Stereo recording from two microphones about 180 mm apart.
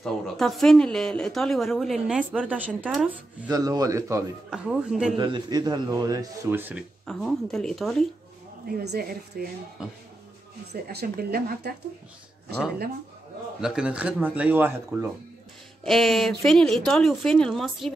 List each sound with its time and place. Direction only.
0.0 s speech: centre (ahead or behind)
3.5 s a man's voice: 20° right (ahead or behind)
4.5 s speech: 5° right (ahead or behind)
5.1 s a man's voice: 25° right (ahead or behind); by 6.8 s 10° right (ahead or behind)
7.1 s speech: 5° left (ahead or behind)
8.6 s speech: 60° right (ahead or behind)
10.7 s speech: 65° right (ahead or behind)
13.6 s speech: 5° right (ahead or behind)
15.8 s speech: centre (ahead or behind)